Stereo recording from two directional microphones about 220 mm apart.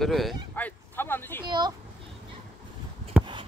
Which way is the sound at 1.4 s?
20° right (ahead or behind).